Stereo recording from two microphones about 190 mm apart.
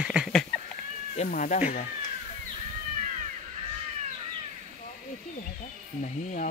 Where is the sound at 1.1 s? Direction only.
40° left (ahead or behind).